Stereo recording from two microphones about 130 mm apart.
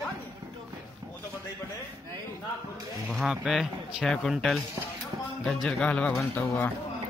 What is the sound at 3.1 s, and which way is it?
A man's voice, centre (ahead or behind).